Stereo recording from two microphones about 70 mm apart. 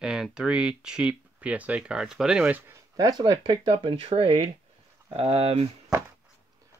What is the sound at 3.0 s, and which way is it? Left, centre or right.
Speech, right.